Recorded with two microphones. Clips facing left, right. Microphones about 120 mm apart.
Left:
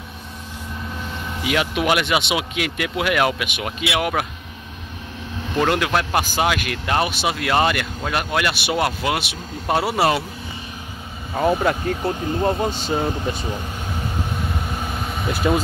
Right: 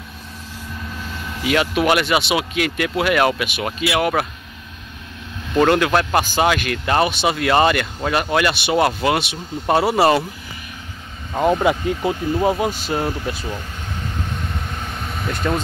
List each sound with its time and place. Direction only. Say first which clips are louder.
1.1 s speech: right 3 dB; 20° left (ahead or behind)
3.6 s speech: right 3 dB; centre (ahead or behind)
5.7 s speech: right 4 dB; 5° left (ahead or behind)
11.3 s speech: right 2 dB; 5° left (ahead or behind)
12.0 s speech: right 2 dB; 10° right (ahead or behind)
13.4 s speech: left 1 dB; 15° left (ahead or behind)
14.4 s vehicle: left 2 dB; 10° left (ahead or behind)